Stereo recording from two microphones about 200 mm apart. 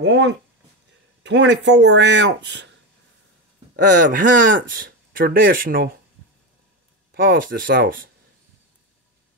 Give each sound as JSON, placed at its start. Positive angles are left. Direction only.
{"t": 0.0, "sound": "speech", "side_deg": -60}
{"t": 3.7, "sound": "speech", "side_deg": -40}
{"t": 7.2, "sound": "speech", "side_deg": -45}